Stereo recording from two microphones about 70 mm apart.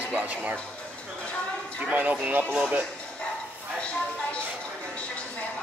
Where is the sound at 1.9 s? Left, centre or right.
Right.